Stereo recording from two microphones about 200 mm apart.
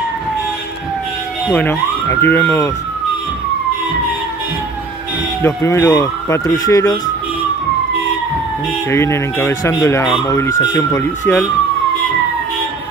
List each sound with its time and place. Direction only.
1.5 s speech: 10° left (ahead or behind)
5.4 s speech: 15° left (ahead or behind)
8.9 s speech: 15° left (ahead or behind)